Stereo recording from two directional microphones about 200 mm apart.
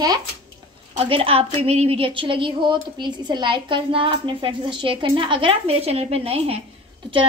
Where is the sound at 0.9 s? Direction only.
25° right (ahead or behind).